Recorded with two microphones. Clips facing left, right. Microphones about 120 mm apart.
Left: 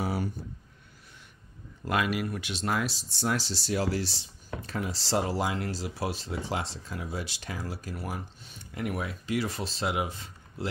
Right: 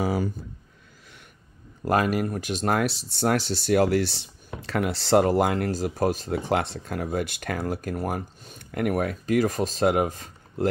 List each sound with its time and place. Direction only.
1.9 s speech: 45° right (ahead or behind); by 4.3 s 60° right (ahead or behind)
4.6 s speech: 75° right (ahead or behind); by 10.7 s 45° right (ahead or behind)